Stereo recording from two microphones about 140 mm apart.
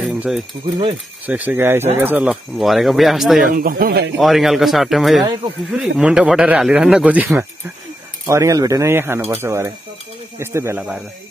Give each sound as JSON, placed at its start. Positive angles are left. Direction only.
{"t": 0.0, "sound": "a sound", "side_deg": -5}
{"t": 1.2, "sound": "speech", "side_deg": -10}
{"t": 3.5, "sound": "speech", "side_deg": -80}
{"t": 4.2, "sound": "speech", "side_deg": 0}
{"t": 8.3, "sound": "speech", "side_deg": -20}